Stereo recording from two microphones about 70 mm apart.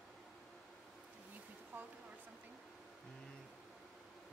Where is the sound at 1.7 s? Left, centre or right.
Right.